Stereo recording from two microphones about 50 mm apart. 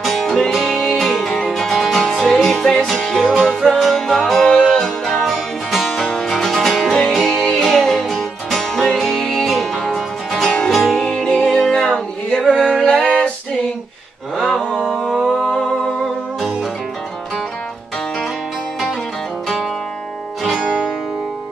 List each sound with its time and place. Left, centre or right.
0.0 s music: centre
12.3 s a sound: left
12.6 s music: centre
14.3 s mantra: centre
14.9 s a sound: centre
15.4 s music: centre